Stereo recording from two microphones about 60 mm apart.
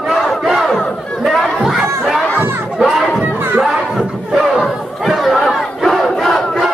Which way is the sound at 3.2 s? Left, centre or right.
Right.